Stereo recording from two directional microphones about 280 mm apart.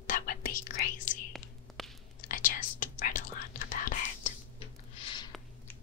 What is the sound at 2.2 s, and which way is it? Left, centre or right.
Whispering, left.